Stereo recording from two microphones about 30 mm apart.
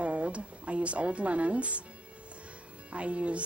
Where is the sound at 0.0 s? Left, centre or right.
Right.